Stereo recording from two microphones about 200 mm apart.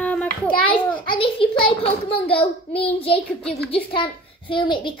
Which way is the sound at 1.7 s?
25° left (ahead or behind).